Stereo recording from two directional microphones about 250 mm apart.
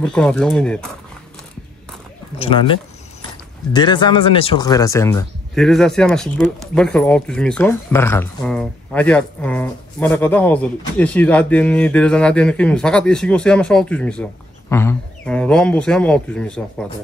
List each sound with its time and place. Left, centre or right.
0.0 s speech: centre
2.3 s speech: left
5.5 s speech: centre